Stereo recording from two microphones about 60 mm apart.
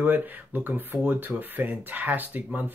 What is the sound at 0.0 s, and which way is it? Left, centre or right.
Speech, right.